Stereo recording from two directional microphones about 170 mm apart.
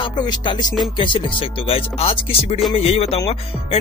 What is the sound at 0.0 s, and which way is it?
Music, 25° left (ahead or behind).